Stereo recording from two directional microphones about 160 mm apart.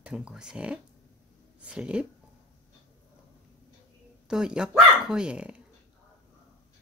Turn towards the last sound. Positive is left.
turn(degrees=-5)  # may be behind; listen again after turning